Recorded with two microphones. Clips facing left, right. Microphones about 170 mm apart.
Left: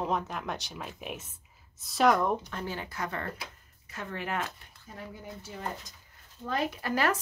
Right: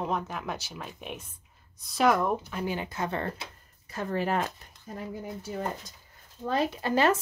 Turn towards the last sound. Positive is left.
turn(degrees=-25)  # may be behind; listen again after turning